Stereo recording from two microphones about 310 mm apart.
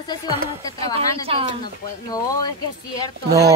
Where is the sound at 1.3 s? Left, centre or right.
Centre.